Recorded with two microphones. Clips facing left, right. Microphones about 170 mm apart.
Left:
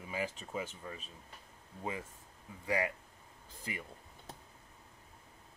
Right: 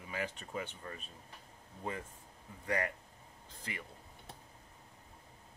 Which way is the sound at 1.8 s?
10° left (ahead or behind).